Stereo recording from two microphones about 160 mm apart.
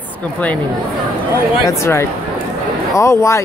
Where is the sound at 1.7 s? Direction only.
15° left (ahead or behind).